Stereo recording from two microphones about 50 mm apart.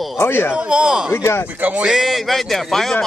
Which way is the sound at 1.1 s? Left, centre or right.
Left.